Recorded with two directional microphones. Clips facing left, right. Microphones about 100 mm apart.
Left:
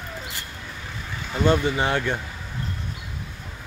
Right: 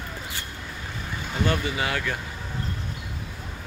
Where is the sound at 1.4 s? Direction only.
25° left (ahead or behind).